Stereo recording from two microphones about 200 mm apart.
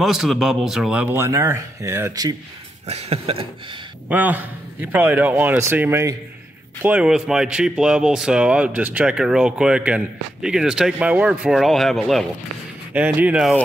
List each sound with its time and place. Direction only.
0.0 s speech: centre (ahead or behind)
2.9 s a sound: 30° right (ahead or behind)
4.1 s speech: 10° right (ahead or behind)